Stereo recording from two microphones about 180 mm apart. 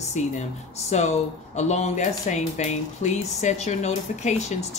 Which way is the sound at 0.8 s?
40° left (ahead or behind).